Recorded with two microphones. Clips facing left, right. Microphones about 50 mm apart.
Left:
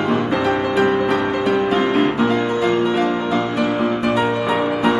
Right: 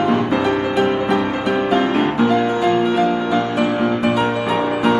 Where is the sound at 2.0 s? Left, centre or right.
Left.